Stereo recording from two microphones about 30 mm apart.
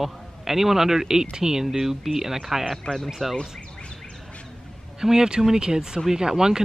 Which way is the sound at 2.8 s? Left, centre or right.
Left.